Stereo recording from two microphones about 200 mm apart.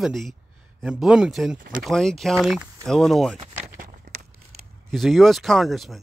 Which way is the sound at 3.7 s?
35° right (ahead or behind).